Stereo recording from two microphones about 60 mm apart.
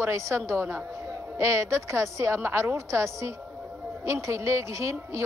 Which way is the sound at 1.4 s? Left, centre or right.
Right.